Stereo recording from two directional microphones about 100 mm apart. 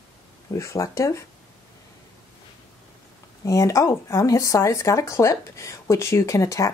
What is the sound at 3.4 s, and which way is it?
Speech, 35° left (ahead or behind).